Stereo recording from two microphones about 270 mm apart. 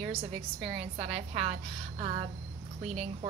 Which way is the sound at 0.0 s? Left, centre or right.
Right.